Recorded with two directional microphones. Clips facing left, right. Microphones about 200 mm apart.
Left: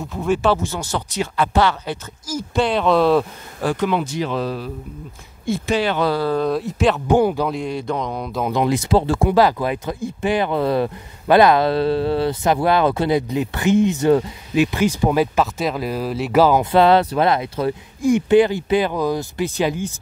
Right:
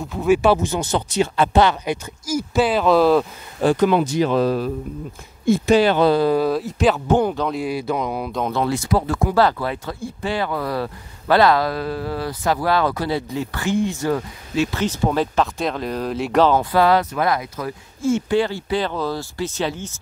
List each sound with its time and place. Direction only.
0.0 s speech: centre (ahead or behind)
3.7 s speech: 40° right (ahead or behind)
6.0 s speech: 20° right (ahead or behind)
6.3 s speech: 5° right (ahead or behind)
7.1 s speech: 10° left (ahead or behind)
7.5 s speech: 5° right (ahead or behind)
8.5 s speech: 15° left (ahead or behind)
9.4 s speech: 15° left (ahead or behind)
16.7 s speech: 25° left (ahead or behind)
18.0 s speech: 15° left (ahead or behind)